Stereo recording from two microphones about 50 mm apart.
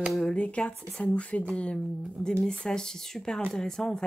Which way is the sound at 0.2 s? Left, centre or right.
Left.